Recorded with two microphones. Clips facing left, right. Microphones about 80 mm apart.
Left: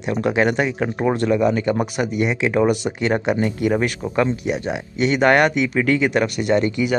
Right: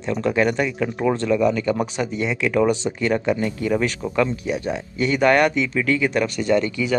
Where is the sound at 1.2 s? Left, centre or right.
Left.